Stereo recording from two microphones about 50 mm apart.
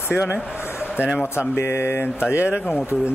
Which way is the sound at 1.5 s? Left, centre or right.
Left.